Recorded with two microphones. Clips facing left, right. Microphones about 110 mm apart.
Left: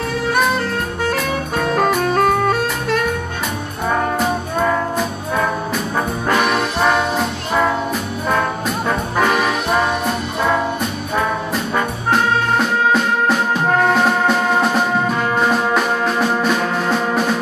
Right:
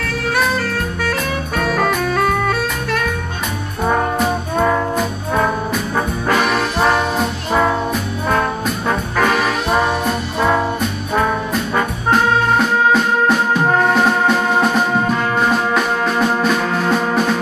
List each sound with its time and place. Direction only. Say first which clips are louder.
4.6 s music: right 2 dB; 5° right (ahead or behind)
5.9 s brass instrument: even; 5° right (ahead or behind)
8.3 s trombone: right 1 dB; centre (ahead or behind)
9.2 s music: even; centre (ahead or behind)
11.7 s music: right 2 dB; 5° right (ahead or behind)
16.3 s music: right 1 dB; 5° left (ahead or behind)